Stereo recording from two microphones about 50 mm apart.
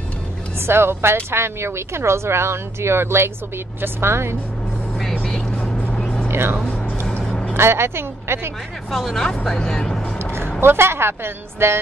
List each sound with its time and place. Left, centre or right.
0.6 s speech: right
5.3 s vehicle: centre
5.6 s vehicle: left
5.9 s vehicle: centre
7.5 s speech: right
8.9 s speech: centre
10.6 s a woman's voice: right